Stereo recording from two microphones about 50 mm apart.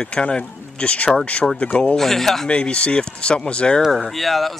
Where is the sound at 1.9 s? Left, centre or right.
Centre.